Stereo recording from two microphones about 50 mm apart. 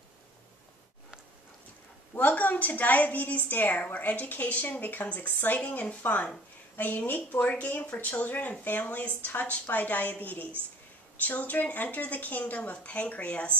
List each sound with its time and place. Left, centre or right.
2.1 s a woman's voice: left